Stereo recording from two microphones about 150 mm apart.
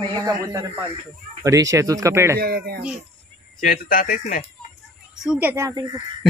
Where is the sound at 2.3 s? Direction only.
90° right.